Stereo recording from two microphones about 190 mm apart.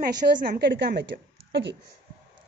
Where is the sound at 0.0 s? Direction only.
55° right (ahead or behind).